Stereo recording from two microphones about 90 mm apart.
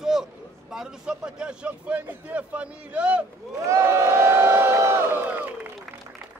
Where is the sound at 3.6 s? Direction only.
35° right (ahead or behind).